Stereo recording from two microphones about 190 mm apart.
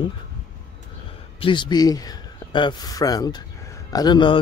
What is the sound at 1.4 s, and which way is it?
Speech, 25° left (ahead or behind).